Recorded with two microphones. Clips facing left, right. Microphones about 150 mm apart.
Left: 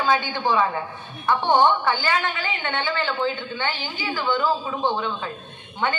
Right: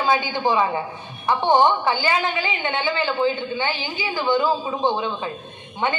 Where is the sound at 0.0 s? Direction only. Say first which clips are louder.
Right 2 dB; 15° right (ahead or behind).